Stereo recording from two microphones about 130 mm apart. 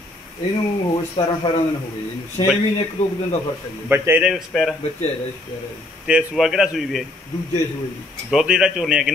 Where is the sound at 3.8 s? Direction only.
15° right (ahead or behind).